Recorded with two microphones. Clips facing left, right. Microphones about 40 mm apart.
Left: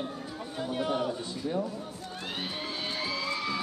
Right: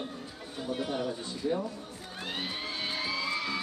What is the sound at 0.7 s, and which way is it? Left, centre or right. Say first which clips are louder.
Speech: left 3 dB; left.